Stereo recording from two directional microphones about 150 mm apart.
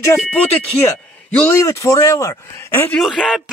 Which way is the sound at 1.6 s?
20° left (ahead or behind).